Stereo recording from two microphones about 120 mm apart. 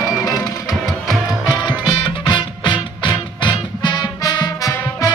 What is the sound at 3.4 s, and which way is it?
Swing music, 40° left (ahead or behind).